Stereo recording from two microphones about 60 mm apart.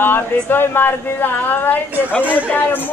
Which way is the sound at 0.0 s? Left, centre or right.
Left.